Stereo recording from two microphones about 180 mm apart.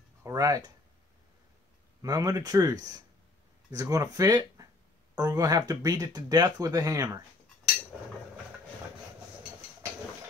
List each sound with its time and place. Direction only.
0.2 s speech: 20° right (ahead or behind)
2.0 s speech: 20° right (ahead or behind)